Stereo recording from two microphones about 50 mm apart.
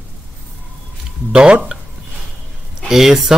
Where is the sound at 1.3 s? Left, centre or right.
Centre.